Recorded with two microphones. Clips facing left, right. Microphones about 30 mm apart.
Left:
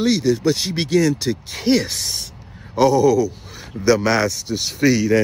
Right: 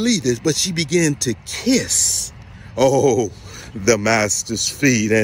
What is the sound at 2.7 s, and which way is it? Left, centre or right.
Speech, left.